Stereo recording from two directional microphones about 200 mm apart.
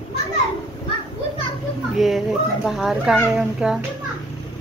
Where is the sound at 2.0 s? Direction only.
Centre (ahead or behind).